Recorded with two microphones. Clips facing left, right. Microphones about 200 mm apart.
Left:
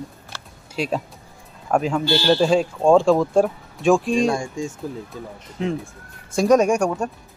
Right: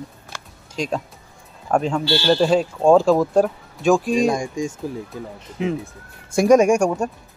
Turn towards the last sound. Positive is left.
turn(degrees=-10)  # may be behind; listen again after turning